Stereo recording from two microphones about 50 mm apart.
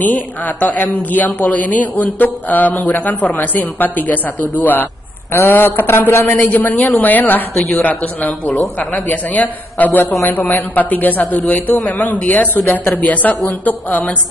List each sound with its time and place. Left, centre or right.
0.0 s a woman's voice: left
5.5 s a sound: left
6.4 s a woman's voice: left